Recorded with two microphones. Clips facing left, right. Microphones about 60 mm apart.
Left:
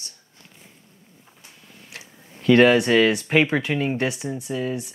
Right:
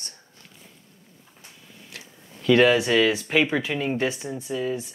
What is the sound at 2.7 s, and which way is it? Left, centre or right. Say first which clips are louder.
Speech: left 3 dB; centre.